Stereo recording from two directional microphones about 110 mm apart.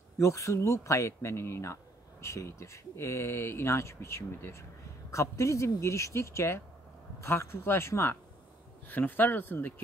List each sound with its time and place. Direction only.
0.2 s speech: 30° left (ahead or behind)